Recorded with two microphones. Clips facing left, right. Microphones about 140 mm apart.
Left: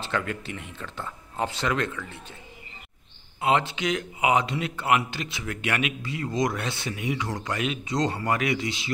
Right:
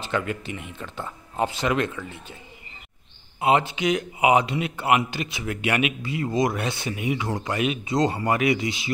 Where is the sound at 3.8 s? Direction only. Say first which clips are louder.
Right 4 dB; 10° right (ahead or behind).